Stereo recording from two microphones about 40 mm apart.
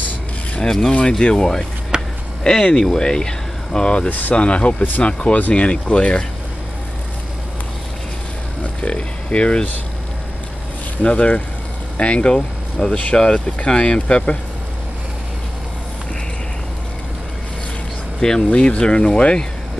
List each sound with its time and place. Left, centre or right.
0.6 s speech: centre
1.9 s a sound: right
2.4 s speech: left
4.1 s speech: left
4.4 s speech: left
8.8 s speech: left
11.0 s speech: left
18.2 s speech: centre
18.5 s speech: left